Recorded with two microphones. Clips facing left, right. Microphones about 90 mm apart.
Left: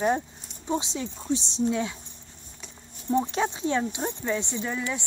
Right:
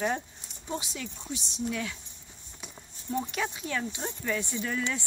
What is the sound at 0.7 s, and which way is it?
A woman's voice, 25° left (ahead or behind).